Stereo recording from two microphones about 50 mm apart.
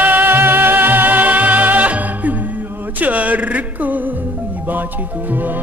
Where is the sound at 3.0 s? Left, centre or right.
Right.